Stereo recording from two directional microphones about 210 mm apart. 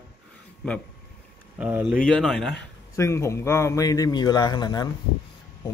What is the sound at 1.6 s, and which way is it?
Speech, 5° right (ahead or behind).